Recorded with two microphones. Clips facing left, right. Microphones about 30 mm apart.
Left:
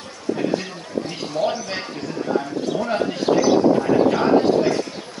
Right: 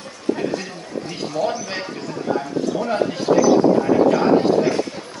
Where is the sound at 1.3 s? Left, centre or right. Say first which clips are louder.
Even; left.